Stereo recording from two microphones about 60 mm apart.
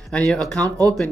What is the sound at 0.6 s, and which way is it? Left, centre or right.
Speech, right.